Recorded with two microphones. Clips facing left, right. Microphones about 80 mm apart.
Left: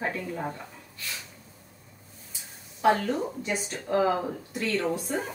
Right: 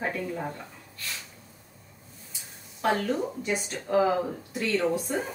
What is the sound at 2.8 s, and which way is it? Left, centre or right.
Speech, centre.